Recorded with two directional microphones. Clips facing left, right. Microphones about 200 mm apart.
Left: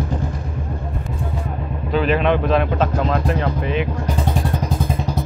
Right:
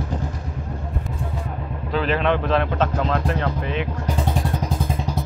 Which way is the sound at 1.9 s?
15° left (ahead or behind).